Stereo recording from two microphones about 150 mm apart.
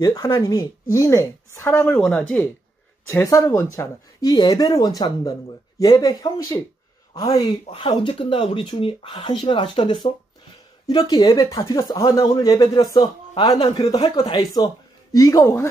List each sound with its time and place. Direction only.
0.0 s speech: 25° left (ahead or behind); by 2.5 s 10° left (ahead or behind)
3.1 s speech: 20° left (ahead or behind)
7.7 s speech: 35° left (ahead or behind)